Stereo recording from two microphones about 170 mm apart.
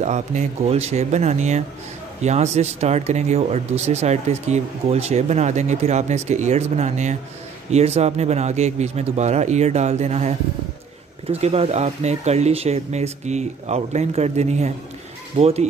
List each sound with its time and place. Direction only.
0.0 s speech: 45° right (ahead or behind)